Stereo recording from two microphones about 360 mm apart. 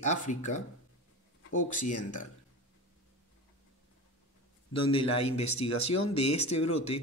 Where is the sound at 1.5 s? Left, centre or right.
Left.